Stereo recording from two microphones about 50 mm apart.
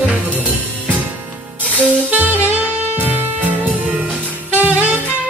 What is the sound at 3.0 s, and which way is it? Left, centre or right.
Music, right.